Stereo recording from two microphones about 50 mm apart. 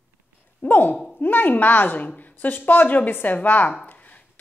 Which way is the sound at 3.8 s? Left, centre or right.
Left.